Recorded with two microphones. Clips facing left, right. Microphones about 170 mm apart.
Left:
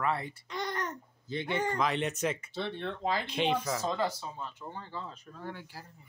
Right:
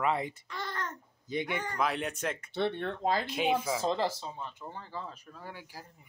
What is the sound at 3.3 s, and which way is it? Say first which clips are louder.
Speech: right 1 dB; 5° right (ahead or behind).